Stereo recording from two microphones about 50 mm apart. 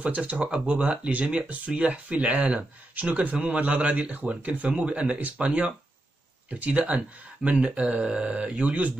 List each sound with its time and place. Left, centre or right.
0.0 s speech: right